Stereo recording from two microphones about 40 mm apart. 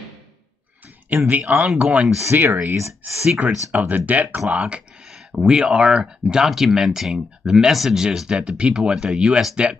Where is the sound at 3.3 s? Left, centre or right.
Right.